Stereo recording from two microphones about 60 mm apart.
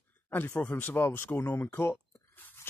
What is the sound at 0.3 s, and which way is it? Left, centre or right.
Speech, left.